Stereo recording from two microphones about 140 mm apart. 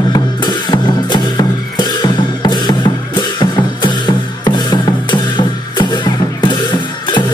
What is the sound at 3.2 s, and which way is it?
Music, 35° left (ahead or behind).